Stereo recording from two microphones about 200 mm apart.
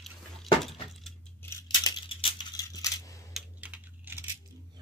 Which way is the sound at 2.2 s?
20° left (ahead or behind).